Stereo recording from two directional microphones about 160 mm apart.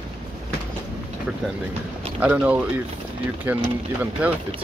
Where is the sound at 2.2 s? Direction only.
10° right (ahead or behind).